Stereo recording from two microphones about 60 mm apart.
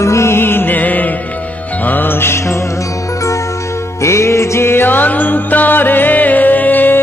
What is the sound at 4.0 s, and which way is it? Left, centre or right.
Music, left.